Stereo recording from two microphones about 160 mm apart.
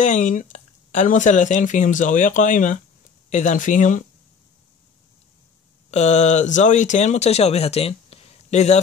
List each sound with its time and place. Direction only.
0.0 s speech: 50° left (ahead or behind)
5.9 s speech: 45° left (ahead or behind)